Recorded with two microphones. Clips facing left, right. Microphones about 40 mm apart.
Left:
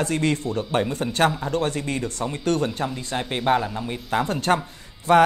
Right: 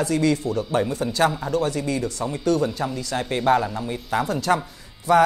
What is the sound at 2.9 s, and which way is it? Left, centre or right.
Speech, left.